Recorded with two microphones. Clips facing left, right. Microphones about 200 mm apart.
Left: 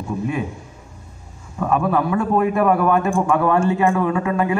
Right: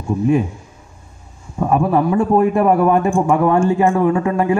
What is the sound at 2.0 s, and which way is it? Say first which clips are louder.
Speech: right 4 dB; 30° right (ahead or behind).